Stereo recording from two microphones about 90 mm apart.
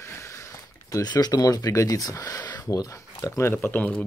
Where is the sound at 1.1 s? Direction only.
50° left (ahead or behind).